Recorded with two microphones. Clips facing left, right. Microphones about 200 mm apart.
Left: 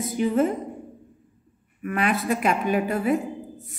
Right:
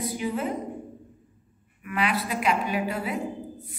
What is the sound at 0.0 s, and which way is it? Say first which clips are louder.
Speech: left 7 dB; 50° left (ahead or behind).